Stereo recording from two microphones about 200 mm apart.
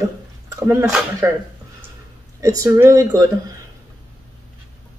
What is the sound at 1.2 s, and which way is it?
Speech, 15° right (ahead or behind).